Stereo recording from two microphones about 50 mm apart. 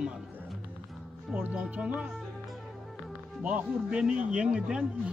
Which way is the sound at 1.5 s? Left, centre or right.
Right.